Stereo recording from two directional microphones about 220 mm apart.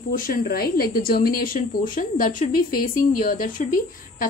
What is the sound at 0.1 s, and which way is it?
A woman's voice, 40° left (ahead or behind).